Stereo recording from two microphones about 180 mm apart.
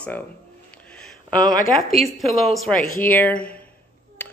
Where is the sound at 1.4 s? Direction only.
50° left (ahead or behind).